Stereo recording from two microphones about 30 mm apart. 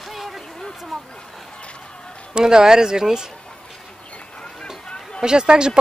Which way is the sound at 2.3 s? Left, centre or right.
Right.